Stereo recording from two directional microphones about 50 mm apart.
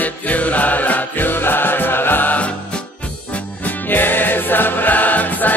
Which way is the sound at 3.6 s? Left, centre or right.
Left.